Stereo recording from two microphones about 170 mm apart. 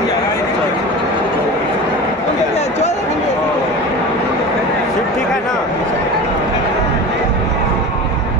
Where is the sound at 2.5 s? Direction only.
40° left (ahead or behind).